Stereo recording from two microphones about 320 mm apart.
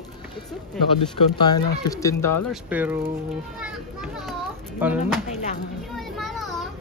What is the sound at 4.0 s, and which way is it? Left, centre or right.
Children playing, centre.